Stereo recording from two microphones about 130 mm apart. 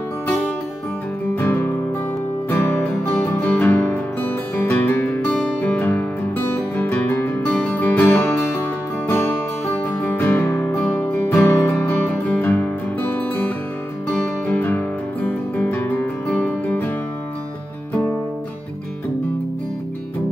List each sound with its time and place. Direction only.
1.3 s music: 15° left (ahead or behind)
9.8 s music: 10° left (ahead or behind)
14.5 s music: 15° left (ahead or behind)